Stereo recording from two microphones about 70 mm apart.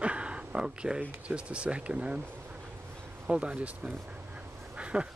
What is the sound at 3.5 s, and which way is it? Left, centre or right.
Duck, centre.